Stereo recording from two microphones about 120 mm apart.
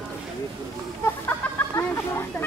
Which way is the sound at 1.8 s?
15° left (ahead or behind).